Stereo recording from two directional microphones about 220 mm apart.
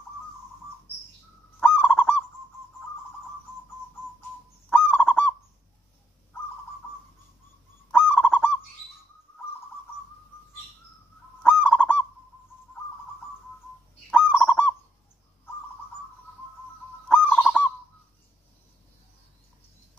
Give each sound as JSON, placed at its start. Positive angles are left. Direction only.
{"t": 1.6, "sound": "goose", "side_deg": -5}
{"t": 4.6, "sound": "goose", "side_deg": -5}
{"t": 7.9, "sound": "goose", "side_deg": -5}
{"t": 11.4, "sound": "goose", "side_deg": -5}
{"t": 14.1, "sound": "fowl", "side_deg": -5}
{"t": 17.1, "sound": "goose", "side_deg": -5}